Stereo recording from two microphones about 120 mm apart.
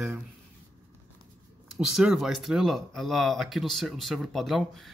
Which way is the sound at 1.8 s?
5° right (ahead or behind).